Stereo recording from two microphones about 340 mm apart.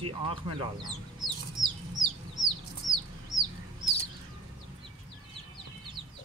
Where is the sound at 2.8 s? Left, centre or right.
Centre.